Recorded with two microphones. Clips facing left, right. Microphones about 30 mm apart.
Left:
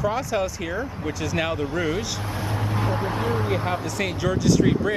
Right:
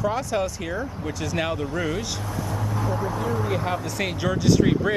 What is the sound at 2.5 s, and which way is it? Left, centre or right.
Vehicle, left.